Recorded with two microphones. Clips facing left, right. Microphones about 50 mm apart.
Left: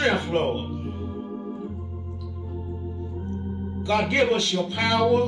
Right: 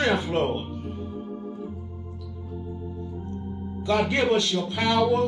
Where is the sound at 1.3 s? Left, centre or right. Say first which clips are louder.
Left 2 dB; centre.